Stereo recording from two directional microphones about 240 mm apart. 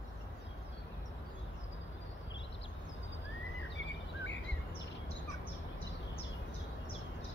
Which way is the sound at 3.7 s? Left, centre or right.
Left.